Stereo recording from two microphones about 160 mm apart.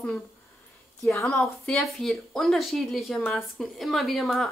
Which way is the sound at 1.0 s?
15° left (ahead or behind).